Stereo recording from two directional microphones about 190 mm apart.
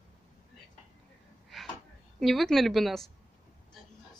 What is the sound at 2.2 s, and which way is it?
Speech, centre (ahead or behind).